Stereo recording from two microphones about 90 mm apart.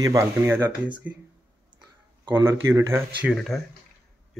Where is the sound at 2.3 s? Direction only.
30° right (ahead or behind).